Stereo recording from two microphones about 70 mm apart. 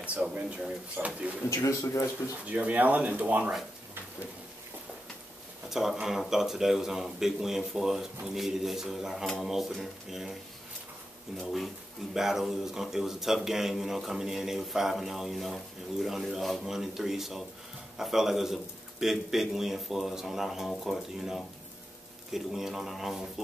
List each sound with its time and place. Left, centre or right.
0.0 s speech: centre
1.5 s a man's voice: left
2.5 s speech: right
5.7 s speech: centre
11.3 s speech: centre